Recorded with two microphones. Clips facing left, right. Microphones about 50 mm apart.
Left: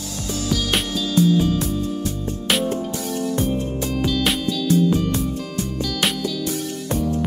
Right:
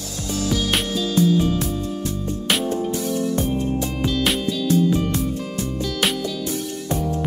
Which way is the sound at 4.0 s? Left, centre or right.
Centre.